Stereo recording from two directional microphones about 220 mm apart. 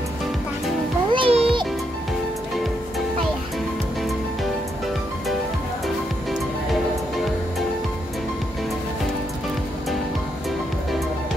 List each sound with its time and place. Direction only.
1.1 s music: 25° right (ahead or behind)